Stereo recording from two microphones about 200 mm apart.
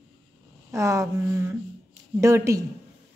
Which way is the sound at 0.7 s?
15° right (ahead or behind).